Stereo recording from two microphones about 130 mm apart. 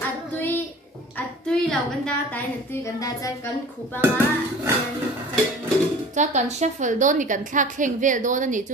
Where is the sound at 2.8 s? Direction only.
25° left (ahead or behind).